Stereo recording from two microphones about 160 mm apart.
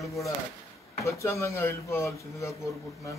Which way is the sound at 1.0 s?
20° left (ahead or behind).